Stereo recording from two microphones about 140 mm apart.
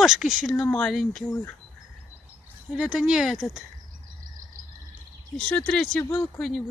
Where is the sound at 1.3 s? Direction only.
15° left (ahead or behind).